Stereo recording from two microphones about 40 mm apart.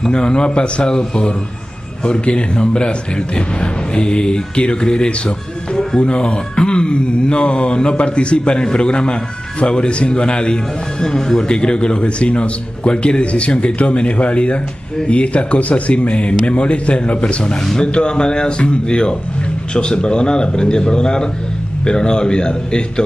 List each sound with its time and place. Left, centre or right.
0.1 s speech: left
5.9 s speech: left